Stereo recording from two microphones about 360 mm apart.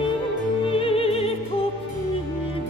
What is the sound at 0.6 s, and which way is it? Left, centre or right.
Music, centre.